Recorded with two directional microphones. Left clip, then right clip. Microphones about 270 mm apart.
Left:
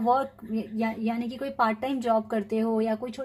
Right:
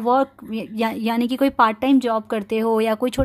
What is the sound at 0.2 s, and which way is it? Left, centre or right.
A woman's voice, right.